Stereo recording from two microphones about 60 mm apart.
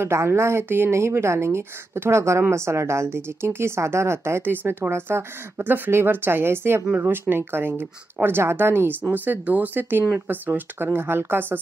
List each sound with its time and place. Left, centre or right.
0.0 s a woman's voice: right
4.4 s a woman's voice: right